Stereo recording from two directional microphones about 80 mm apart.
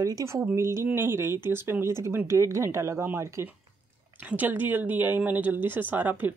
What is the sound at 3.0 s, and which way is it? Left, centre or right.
Speech, right.